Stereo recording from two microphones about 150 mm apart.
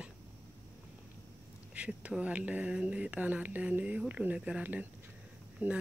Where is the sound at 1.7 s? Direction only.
10° right (ahead or behind).